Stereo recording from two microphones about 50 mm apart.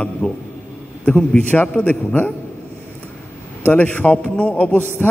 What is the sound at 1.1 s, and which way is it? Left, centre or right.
Speech, left.